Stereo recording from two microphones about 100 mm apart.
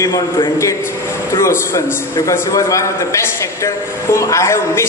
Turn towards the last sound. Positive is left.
turn(degrees=25)  # may be behind; listen again after turning